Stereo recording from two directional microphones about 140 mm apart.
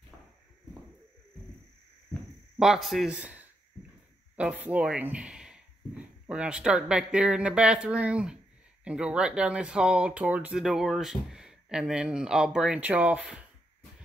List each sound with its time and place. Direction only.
2.6 s speech: centre (ahead or behind)